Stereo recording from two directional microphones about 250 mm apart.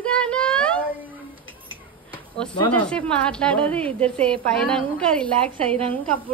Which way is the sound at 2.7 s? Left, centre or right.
Centre.